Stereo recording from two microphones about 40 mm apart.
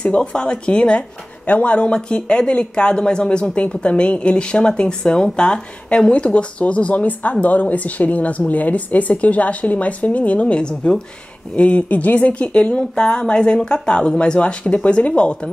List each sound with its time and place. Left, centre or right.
0.0 s speech: left
1.4 s a woman's voice: left